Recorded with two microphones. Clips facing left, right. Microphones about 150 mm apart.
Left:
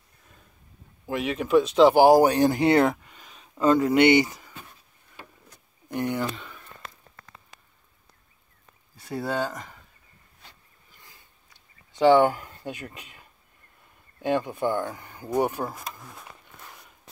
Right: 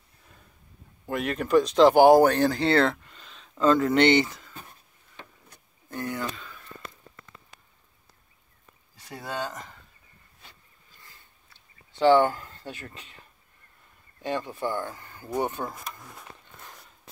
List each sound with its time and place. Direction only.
1.0 s speech: centre (ahead or behind)
5.9 s speech: 20° left (ahead or behind)
11.1 s a sound: 15° left (ahead or behind)
14.2 s speech: 15° left (ahead or behind)